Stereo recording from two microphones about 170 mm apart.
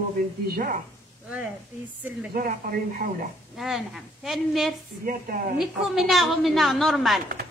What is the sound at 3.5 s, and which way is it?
A woman's voice, centre (ahead or behind).